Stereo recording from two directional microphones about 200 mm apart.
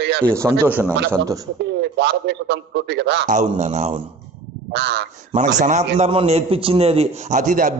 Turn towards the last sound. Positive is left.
turn(degrees=-40)  # may be behind; listen again after turning